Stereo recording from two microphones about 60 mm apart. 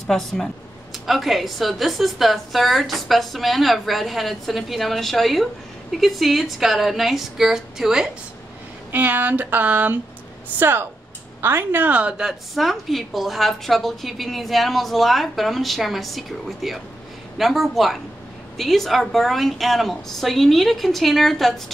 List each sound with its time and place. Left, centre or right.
0.1 s a woman's voice: centre
8.9 s a sound: right
10.6 s speech: right
11.9 s speech: centre
12.5 s a woman's voice: centre